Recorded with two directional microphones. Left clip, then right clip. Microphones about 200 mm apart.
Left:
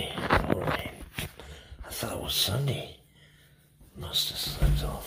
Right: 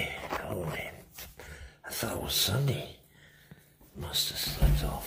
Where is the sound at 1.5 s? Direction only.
15° right (ahead or behind).